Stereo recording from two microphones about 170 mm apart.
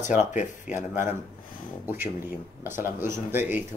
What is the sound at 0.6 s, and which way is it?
Speech, 10° right (ahead or behind).